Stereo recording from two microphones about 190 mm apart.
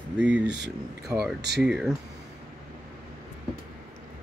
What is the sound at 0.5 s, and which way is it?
Speech, 65° right (ahead or behind).